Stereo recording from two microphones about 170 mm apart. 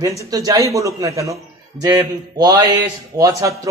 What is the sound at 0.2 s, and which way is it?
A man's voice, 20° right (ahead or behind).